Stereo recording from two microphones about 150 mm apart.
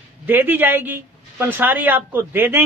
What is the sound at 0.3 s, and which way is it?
A man's voice, 10° right (ahead or behind).